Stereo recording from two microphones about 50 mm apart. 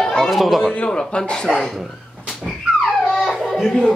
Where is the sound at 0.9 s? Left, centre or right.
Centre.